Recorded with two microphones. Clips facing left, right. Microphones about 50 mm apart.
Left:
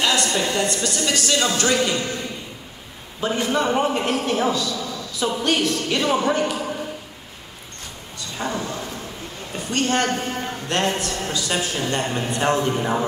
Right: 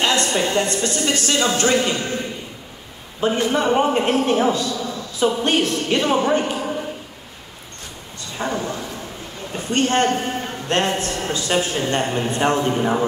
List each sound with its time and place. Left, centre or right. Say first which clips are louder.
0.0 s a man's voice: right 2 dB; right
8.2 s a man's voice: right 2 dB; right